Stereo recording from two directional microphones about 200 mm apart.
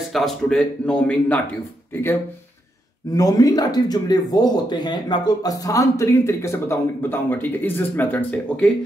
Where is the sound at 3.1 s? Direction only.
20° left (ahead or behind).